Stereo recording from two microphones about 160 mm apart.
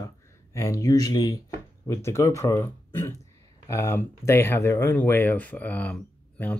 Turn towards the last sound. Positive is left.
turn(degrees=10)  # may be behind; listen again after turning